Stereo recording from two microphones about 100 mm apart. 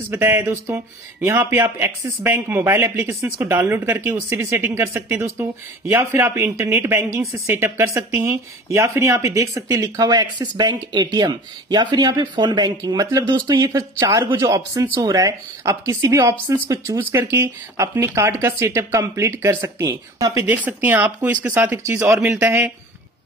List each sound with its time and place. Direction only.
0.1 s speech: 20° right (ahead or behind)
20.4 s speech: 15° right (ahead or behind)